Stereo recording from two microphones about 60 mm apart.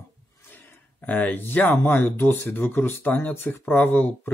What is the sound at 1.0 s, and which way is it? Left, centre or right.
Speech, left.